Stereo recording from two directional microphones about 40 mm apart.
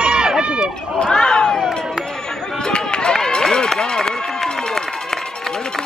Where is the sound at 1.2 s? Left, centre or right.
Centre.